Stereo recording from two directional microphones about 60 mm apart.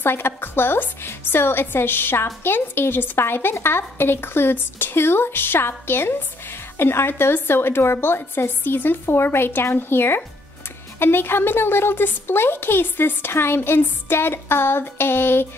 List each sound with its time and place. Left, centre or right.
0.0 s a woman's voice: left